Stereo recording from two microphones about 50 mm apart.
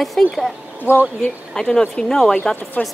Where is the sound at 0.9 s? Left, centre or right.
Left.